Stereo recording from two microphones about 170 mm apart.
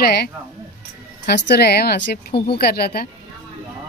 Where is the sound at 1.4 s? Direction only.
75° left (ahead or behind).